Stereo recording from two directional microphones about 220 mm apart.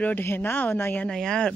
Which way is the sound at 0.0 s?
10° left (ahead or behind).